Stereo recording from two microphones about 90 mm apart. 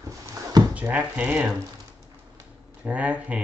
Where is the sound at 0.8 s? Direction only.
15° right (ahead or behind).